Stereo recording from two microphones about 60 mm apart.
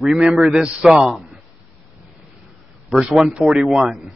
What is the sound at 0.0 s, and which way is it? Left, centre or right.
Speech, centre.